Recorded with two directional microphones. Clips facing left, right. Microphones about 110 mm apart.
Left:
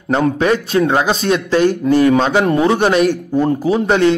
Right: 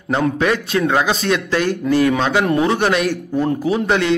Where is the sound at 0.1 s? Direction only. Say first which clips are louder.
Left 3 dB; 30° left (ahead or behind).